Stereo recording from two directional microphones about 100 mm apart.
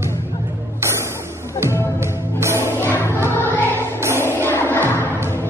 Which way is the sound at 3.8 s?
25° right (ahead or behind).